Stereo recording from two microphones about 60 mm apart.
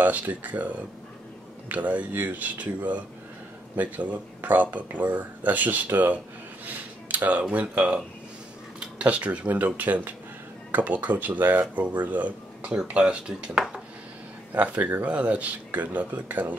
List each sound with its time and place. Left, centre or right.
0.0 s speech: right
6.6 s a sound: right
7.4 s speech: centre
14.5 s speech: right